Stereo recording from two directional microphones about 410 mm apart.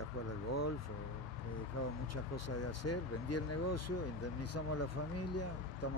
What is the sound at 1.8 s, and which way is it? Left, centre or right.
Speech, left.